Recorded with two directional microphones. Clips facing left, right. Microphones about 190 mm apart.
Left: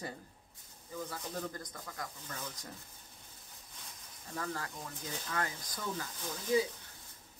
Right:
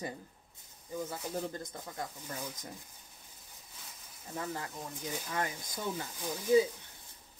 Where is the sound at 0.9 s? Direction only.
20° right (ahead or behind).